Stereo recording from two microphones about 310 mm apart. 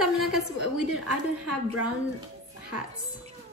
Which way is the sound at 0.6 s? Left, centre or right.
Right.